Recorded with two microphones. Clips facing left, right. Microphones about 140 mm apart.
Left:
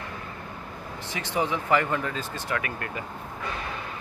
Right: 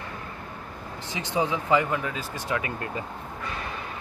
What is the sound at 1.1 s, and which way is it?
Speech, 20° right (ahead or behind).